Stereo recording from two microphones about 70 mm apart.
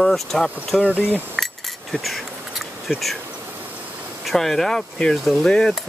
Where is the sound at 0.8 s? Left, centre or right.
Centre.